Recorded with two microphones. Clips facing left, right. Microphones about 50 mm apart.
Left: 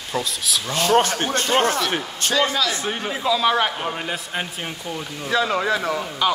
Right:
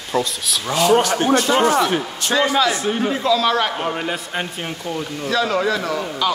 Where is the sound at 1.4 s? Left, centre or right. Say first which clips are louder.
Right 3 dB; left.